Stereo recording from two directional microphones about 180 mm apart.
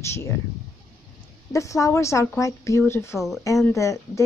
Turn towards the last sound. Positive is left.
turn(degrees=15)  # may be behind; listen again after turning